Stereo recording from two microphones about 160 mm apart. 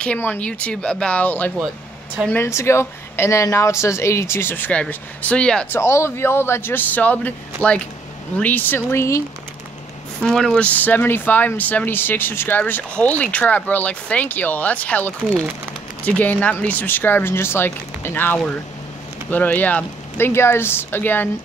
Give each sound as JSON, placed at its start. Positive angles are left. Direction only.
{"t": 0.0, "sound": "speech", "side_deg": 10}
{"t": 5.8, "sound": "speech", "side_deg": 15}
{"t": 10.2, "sound": "speech", "side_deg": 5}
{"t": 15.0, "sound": "speech", "side_deg": -15}
{"t": 16.2, "sound": "speech", "side_deg": 10}